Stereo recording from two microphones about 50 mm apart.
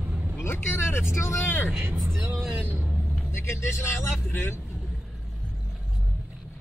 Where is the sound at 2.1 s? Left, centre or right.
Right.